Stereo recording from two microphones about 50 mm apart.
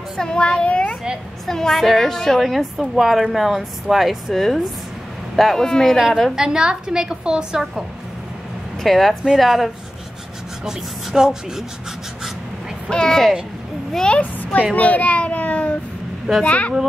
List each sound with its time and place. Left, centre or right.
0.2 s speech: centre
1.5 s a woman's voice: centre
6.3 s a woman's voice: centre
8.8 s speech: centre
10.6 s a woman's voice: centre
12.9 s a woman's voice: centre
14.2 s a child's voice: left